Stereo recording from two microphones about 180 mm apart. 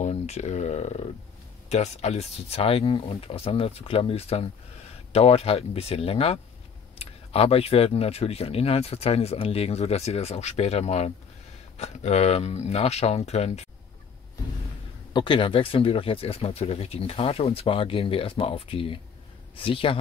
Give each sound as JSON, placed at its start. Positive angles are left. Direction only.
{"t": 0.0, "sound": "speech", "side_deg": 35}
{"t": 15.1, "sound": "a man's voice", "side_deg": 25}